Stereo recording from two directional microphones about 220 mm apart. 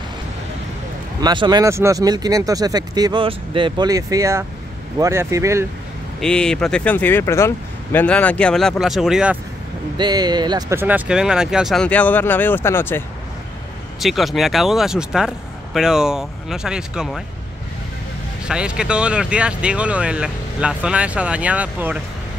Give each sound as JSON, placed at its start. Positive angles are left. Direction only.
{"t": 1.2, "sound": "speech", "side_deg": -20}
{"t": 6.2, "sound": "speech", "side_deg": 5}
{"t": 9.9, "sound": "speech", "side_deg": -20}
{"t": 13.9, "sound": "speech", "side_deg": 0}
{"t": 18.5, "sound": "speech", "side_deg": -5}